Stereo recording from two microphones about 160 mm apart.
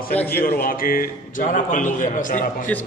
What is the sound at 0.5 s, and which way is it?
A man's voice, 65° left (ahead or behind).